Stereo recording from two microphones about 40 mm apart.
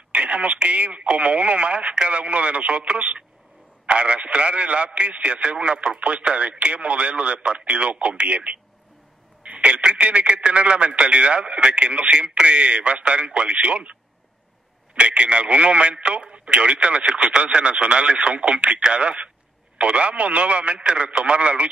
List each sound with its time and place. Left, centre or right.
0.1 s speech: right
15.0 s speech: right